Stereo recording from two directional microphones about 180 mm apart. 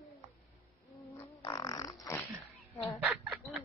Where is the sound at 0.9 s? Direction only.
15° left (ahead or behind).